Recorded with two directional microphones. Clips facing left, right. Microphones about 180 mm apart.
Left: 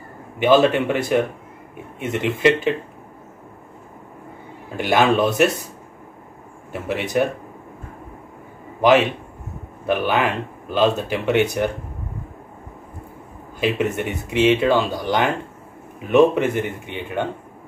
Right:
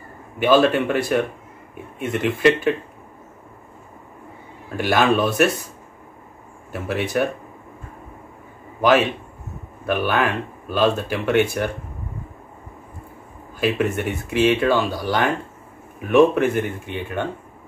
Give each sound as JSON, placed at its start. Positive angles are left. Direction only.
{"t": 0.4, "sound": "speech", "side_deg": 20}
{"t": 4.7, "sound": "speech", "side_deg": 20}
{"t": 6.7, "sound": "speech", "side_deg": 15}
{"t": 8.8, "sound": "speech", "side_deg": 20}
{"t": 13.6, "sound": "speech", "side_deg": 20}